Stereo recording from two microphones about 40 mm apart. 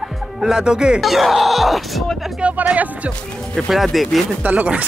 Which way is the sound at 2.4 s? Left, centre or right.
Right.